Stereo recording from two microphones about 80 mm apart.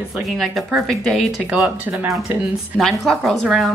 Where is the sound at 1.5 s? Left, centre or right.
Centre.